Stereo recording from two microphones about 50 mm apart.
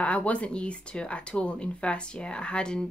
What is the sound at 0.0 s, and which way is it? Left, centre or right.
Speech, left.